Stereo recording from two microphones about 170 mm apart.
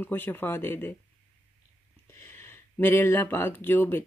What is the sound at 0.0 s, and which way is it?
Speech, 10° left (ahead or behind).